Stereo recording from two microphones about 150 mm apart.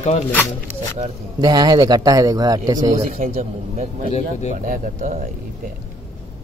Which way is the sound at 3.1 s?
50° right (ahead or behind).